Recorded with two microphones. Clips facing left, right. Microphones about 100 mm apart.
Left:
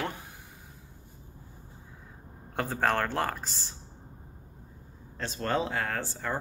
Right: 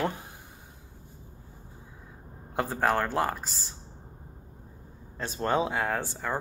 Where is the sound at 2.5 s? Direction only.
5° right (ahead or behind).